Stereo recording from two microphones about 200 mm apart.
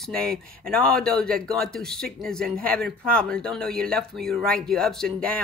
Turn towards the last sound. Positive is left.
turn(degrees=5)  # may be behind; listen again after turning